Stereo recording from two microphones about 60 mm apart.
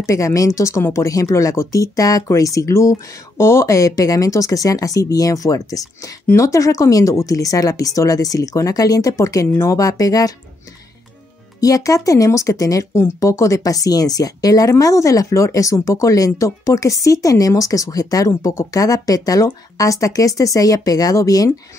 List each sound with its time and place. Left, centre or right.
0.0 s speech: left
2.7 s speech: left
3.3 s speech: left
6.3 s speech: left
11.6 s speech: left
19.8 s speech: left